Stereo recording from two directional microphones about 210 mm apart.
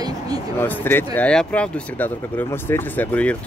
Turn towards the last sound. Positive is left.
turn(degrees=5)  # may be behind; listen again after turning